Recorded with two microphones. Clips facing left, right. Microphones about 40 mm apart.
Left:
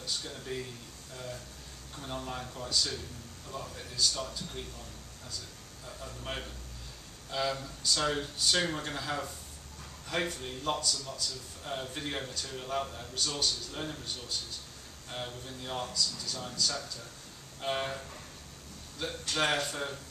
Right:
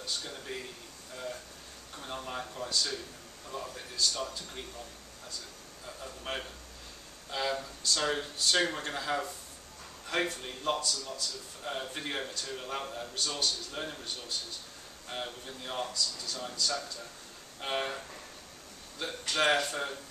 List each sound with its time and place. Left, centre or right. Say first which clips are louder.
0.0 s speech: even; centre
5.9 s speech: right 1 dB; centre